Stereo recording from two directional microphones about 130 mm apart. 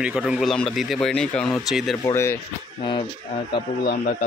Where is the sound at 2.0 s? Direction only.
20° left (ahead or behind).